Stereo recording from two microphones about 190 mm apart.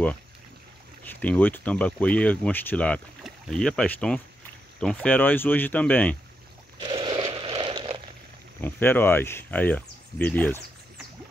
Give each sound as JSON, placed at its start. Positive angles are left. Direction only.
{"t": 1.0, "sound": "speech", "side_deg": 10}
{"t": 6.8, "sound": "a sound", "side_deg": -25}
{"t": 8.5, "sound": "speech", "side_deg": 10}